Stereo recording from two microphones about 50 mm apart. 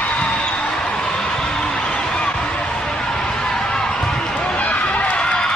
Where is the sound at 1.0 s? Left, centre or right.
Centre.